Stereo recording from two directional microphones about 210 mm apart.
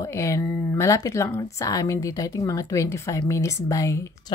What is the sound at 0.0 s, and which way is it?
A woman's voice, 15° left (ahead or behind).